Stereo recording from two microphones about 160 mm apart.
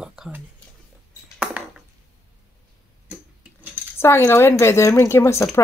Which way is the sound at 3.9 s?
15° left (ahead or behind).